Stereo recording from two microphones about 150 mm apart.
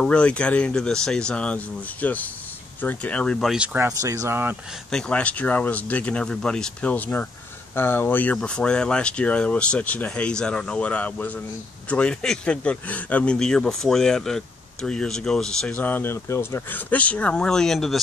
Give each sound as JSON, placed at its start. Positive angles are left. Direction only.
{"t": 0.0, "sound": "speech", "side_deg": 5}
{"t": 3.8, "sound": "speech", "side_deg": -20}
{"t": 4.9, "sound": "a man's voice", "side_deg": 5}